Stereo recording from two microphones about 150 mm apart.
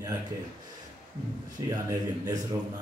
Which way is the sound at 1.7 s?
25° right (ahead or behind).